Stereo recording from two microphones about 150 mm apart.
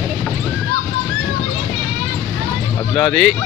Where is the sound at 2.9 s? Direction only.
5° left (ahead or behind).